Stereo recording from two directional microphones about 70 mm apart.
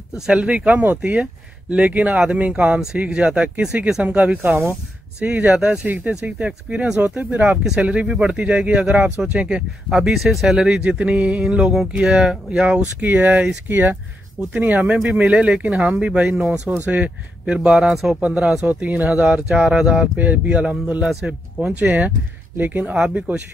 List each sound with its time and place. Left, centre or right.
0.3 s speech: centre
17.7 s speech: centre
18.2 s speech: centre
18.7 s speech: right